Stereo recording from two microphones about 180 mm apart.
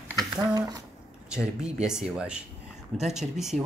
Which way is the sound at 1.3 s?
5° right (ahead or behind).